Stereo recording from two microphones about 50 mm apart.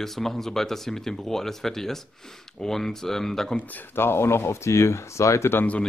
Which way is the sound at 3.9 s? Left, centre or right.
Left.